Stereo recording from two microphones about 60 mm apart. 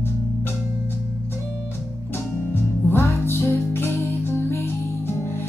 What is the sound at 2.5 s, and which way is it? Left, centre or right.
Music, left.